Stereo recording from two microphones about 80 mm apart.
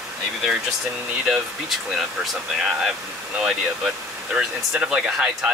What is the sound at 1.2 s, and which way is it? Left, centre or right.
Speech, centre.